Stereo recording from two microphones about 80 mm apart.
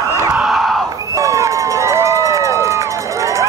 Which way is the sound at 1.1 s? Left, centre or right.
Right.